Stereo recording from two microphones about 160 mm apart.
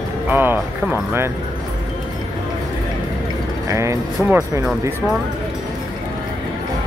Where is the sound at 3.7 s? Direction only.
20° right (ahead or behind).